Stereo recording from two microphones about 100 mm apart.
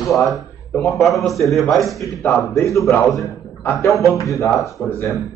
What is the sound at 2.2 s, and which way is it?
Speech, 30° left (ahead or behind).